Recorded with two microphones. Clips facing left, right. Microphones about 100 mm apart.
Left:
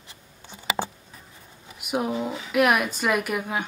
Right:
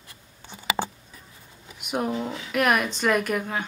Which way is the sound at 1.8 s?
5° left (ahead or behind).